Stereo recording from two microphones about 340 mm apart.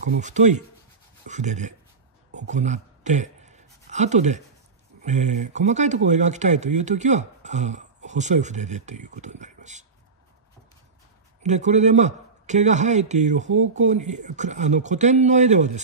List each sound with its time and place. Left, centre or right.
0.0 s speech: right
2.3 s a sound: right
5.0 s speech: right
11.4 s speech: right